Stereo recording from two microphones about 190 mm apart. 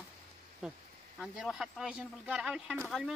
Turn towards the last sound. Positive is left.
turn(degrees=0)  # may be behind; listen again after turning